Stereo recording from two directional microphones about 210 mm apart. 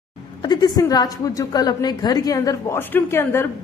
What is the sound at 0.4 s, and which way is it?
A woman's voice, 20° left (ahead or behind).